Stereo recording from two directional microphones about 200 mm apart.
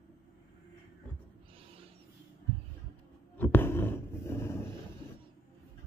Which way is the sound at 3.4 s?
10° left (ahead or behind).